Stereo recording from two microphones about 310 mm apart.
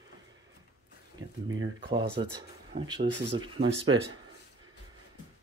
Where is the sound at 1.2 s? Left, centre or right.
Right.